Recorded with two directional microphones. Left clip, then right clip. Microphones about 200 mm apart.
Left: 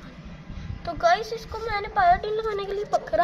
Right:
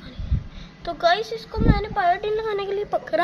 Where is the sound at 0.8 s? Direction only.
30° right (ahead or behind).